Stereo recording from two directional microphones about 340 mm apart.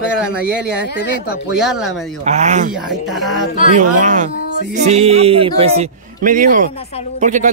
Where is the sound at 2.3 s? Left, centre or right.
Centre.